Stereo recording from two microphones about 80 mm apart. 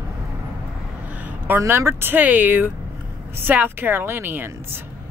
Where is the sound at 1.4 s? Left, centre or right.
Right.